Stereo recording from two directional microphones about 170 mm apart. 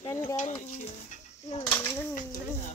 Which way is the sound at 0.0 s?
15° left (ahead or behind).